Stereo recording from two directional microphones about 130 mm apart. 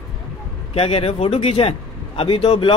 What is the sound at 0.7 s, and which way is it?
A man's voice, 50° left (ahead or behind).